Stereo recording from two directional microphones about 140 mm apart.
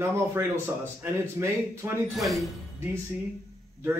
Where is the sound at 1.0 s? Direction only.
15° right (ahead or behind).